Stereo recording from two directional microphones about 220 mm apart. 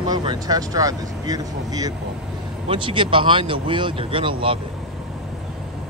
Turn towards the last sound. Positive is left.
turn(degrees=-25)  # may be behind; listen again after turning